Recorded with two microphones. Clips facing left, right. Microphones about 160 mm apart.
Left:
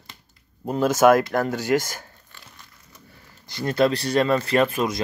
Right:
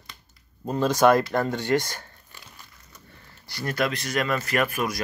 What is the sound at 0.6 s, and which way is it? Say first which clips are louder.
Speech: left 2 dB; 10° left (ahead or behind).